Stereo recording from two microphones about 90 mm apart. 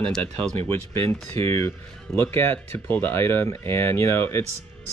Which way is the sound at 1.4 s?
30° left (ahead or behind).